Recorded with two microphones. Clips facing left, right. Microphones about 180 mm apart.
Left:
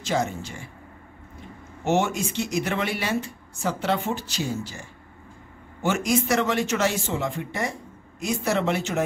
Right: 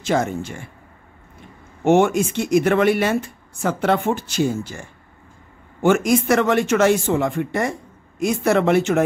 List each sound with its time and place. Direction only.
0.0 s speech: 55° right (ahead or behind)
1.9 s speech: 55° right (ahead or behind)